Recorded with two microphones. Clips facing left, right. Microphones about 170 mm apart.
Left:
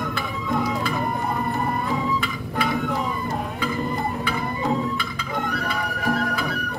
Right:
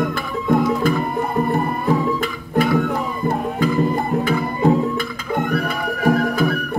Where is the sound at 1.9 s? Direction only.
45° right (ahead or behind).